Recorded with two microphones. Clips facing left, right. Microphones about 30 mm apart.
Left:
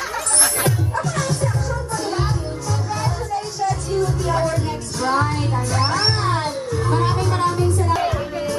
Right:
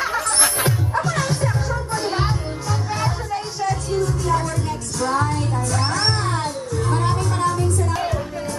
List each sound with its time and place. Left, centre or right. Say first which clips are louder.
0.1 s music: right 2 dB; right
4.2 s music: left 1 dB; left
7.2 s music: left 2 dB; left